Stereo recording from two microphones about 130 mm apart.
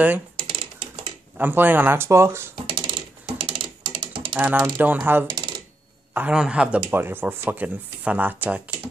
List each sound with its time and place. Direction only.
0.4 s typing: 45° right (ahead or behind)
1.4 s speech: 15° right (ahead or behind)
2.5 s typing: 40° right (ahead or behind)
4.4 s speech: 10° right (ahead or behind)